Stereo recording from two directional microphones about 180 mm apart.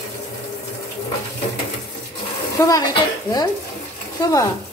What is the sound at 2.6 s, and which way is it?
Speech, 20° left (ahead or behind).